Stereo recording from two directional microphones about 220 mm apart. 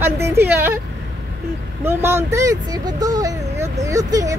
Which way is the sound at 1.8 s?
10° right (ahead or behind).